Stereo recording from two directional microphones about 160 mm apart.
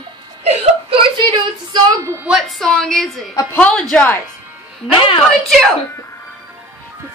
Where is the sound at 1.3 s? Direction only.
25° right (ahead or behind).